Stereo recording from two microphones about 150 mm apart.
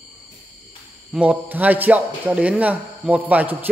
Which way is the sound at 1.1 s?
10° right (ahead or behind).